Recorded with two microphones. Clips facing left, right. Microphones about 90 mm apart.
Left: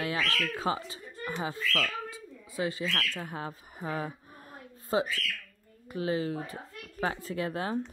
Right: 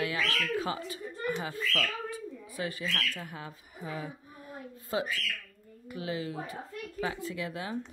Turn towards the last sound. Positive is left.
turn(degrees=40)  # may be behind; listen again after turning